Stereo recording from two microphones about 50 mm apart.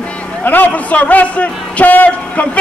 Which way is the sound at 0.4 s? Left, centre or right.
Left.